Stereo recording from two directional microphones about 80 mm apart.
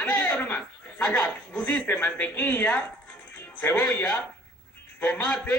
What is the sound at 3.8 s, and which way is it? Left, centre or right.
A man's voice, left.